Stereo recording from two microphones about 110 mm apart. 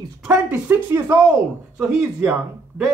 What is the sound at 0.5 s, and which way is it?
Speech, 20° right (ahead or behind).